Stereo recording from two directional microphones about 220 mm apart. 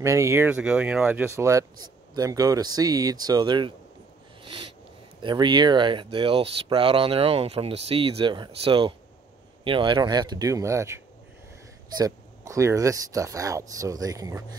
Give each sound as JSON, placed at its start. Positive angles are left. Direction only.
{"t": 0.0, "sound": "speech", "side_deg": -15}
{"t": 4.4, "sound": "a sound", "side_deg": -20}
{"t": 5.2, "sound": "speech", "side_deg": -20}
{"t": 12.0, "sound": "speech", "side_deg": -15}